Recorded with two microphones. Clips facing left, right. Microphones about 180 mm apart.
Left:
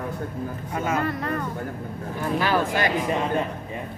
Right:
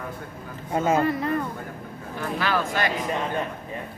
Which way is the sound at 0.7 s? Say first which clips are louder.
Right 5 dB; 25° right (ahead or behind).